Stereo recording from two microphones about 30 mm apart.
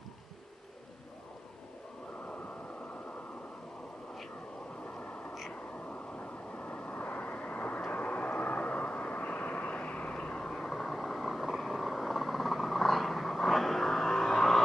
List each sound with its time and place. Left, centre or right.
6.6 s vehicle: left
10.7 s vehicle: centre